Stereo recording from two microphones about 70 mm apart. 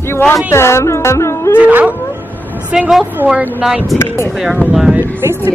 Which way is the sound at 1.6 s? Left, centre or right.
Centre.